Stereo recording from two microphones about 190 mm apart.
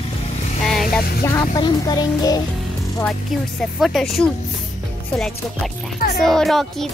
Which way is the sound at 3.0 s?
Centre (ahead or behind).